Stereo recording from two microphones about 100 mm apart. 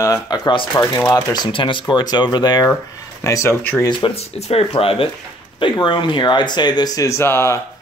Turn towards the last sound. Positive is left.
turn(degrees=25)  # may be behind; listen again after turning